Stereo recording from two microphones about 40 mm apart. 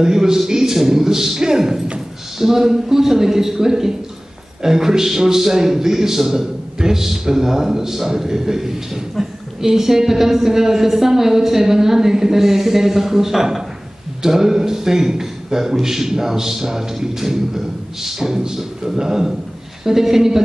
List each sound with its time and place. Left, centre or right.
0.0 s a man's voice: centre